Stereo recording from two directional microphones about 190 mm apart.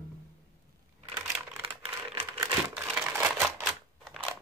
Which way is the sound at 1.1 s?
10° right (ahead or behind).